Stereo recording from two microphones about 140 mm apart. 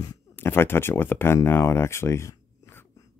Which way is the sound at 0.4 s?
15° left (ahead or behind).